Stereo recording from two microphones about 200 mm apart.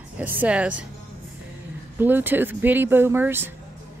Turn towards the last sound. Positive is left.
turn(degrees=-10)  # may be behind; listen again after turning